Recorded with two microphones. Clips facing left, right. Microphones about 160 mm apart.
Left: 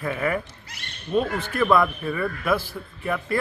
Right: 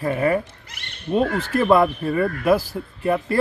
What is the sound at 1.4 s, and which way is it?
A man's voice, 35° right (ahead or behind).